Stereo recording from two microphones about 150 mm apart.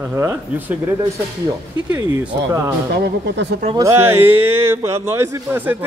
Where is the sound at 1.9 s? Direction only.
20° right (ahead or behind).